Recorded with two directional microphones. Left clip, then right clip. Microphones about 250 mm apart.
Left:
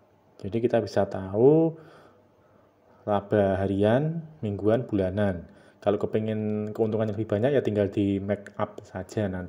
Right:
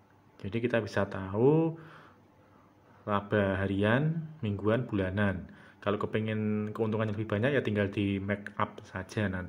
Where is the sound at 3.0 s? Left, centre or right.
Left.